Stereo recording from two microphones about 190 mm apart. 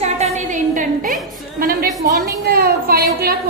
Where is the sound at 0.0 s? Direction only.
40° right (ahead or behind).